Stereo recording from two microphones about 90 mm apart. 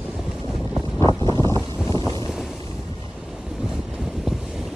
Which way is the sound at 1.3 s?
35° left (ahead or behind).